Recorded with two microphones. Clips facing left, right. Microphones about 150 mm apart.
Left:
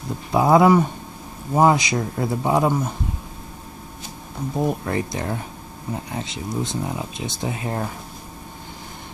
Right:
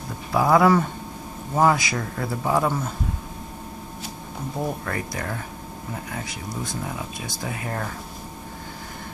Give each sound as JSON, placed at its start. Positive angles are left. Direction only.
{"t": 0.3, "sound": "speech", "side_deg": 20}
{"t": 4.6, "sound": "speech", "side_deg": 20}